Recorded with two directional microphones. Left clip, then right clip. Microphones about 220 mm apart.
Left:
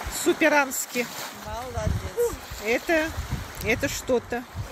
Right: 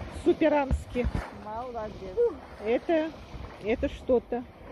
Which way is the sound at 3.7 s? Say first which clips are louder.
Left 2 dB; 35° left (ahead or behind).